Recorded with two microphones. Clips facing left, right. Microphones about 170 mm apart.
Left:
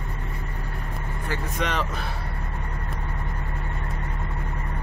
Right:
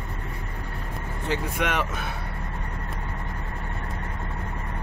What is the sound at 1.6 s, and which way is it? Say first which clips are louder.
Speech: even; 5° right (ahead or behind).